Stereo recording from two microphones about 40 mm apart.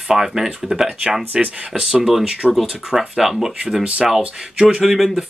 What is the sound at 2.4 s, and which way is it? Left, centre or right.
Speech, centre.